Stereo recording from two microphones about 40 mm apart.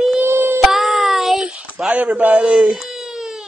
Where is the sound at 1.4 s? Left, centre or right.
Right.